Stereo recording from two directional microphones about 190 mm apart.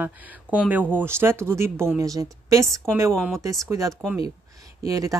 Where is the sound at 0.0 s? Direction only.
10° right (ahead or behind).